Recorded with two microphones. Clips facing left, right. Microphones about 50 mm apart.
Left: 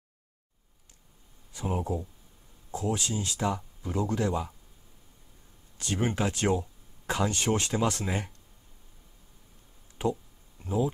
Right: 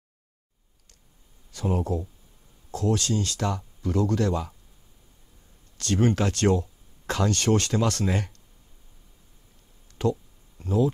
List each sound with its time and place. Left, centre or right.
1.5 s speech: centre
5.8 s speech: centre
10.0 s speech: centre